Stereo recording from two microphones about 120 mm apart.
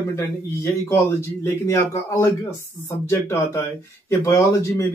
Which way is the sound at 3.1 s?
20° left (ahead or behind).